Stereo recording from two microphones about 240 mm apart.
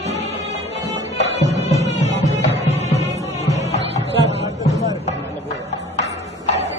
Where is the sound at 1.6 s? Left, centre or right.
Left.